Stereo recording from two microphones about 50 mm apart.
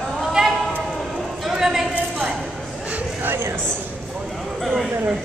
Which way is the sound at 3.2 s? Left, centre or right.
Right.